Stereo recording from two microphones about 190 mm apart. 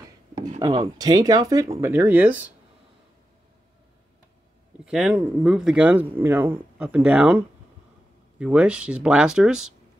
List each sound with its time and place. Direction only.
0.6 s speech: 20° right (ahead or behind)
4.8 s speech: 5° right (ahead or behind)